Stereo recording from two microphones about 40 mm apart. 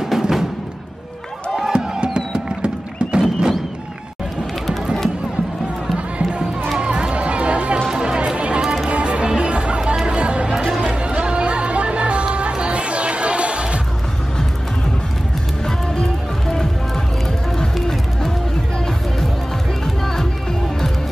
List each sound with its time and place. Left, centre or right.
0.0 s music: centre
1.6 s music: centre
6.8 s music: right
15.6 s music: centre
19.8 s music: centre